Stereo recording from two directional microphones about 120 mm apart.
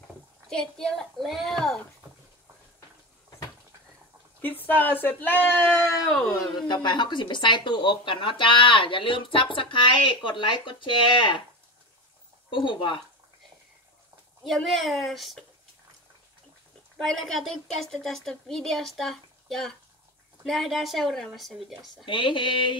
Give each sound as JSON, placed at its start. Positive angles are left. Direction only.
{"t": 0.5, "sound": "a woman's voice", "side_deg": 5}
{"t": 4.4, "sound": "speech", "side_deg": 15}
{"t": 6.5, "sound": "speech", "side_deg": 35}
{"t": 12.4, "sound": "speech", "side_deg": 45}
{"t": 14.4, "sound": "a woman's voice", "side_deg": 0}
{"t": 17.0, "sound": "a woman's voice", "side_deg": 5}
{"t": 22.0, "sound": "speech", "side_deg": 45}